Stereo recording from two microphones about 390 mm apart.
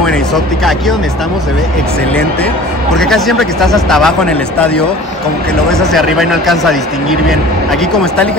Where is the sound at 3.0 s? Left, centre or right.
Centre.